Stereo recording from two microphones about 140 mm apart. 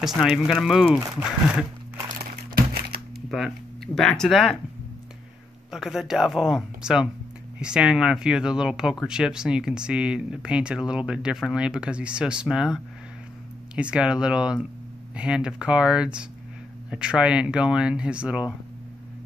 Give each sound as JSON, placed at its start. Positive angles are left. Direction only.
{"t": 0.0, "sound": "speech", "side_deg": -5}
{"t": 2.0, "sound": "crumpling", "side_deg": -90}
{"t": 3.3, "sound": "speech", "side_deg": 0}
{"t": 5.7, "sound": "speech", "side_deg": -5}